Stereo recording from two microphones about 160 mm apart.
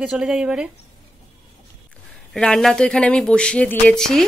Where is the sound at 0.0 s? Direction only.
5° right (ahead or behind).